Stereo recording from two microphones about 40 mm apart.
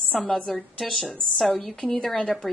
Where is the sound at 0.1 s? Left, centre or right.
Centre.